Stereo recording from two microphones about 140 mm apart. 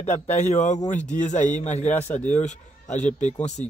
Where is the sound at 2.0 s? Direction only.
10° left (ahead or behind).